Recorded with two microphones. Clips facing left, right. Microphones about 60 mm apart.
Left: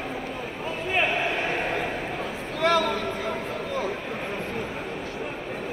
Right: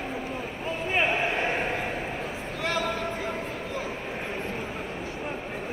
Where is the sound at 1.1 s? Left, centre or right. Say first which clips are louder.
Even; right.